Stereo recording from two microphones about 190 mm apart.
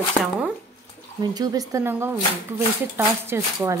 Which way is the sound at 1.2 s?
20° right (ahead or behind).